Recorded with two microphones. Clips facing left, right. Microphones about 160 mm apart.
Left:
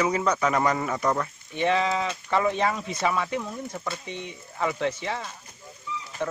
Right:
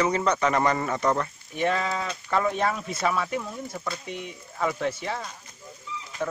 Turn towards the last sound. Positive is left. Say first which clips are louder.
# even
turn(degrees=-10)  # may be behind; listen again after turning